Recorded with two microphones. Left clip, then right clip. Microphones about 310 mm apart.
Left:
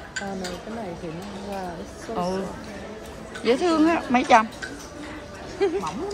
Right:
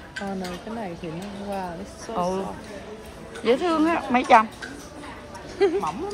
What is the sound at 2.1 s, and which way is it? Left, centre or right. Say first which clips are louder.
Speech: right 2 dB; centre.